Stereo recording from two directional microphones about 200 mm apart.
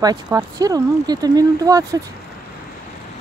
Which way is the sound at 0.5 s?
20° right (ahead or behind).